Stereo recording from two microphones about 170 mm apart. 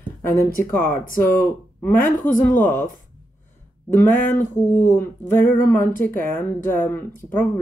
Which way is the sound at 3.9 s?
10° left (ahead or behind).